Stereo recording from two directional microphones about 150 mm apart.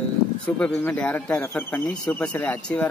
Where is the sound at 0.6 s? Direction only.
10° left (ahead or behind).